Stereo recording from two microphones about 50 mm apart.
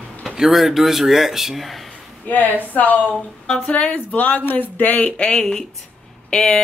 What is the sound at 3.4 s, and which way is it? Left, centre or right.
Speech, centre.